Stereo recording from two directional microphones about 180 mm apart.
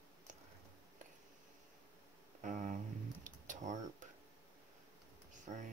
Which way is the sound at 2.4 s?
45° right (ahead or behind).